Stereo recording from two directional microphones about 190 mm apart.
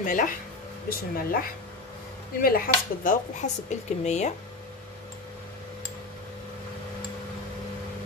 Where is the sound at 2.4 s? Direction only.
50° left (ahead or behind).